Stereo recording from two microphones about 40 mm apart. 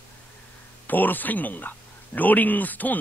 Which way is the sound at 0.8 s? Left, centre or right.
Left.